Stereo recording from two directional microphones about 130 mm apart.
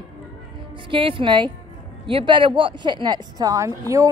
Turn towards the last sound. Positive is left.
turn(degrees=-25)  # may be behind; listen again after turning